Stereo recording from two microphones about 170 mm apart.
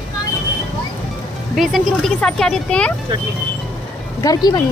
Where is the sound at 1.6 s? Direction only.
Centre (ahead or behind).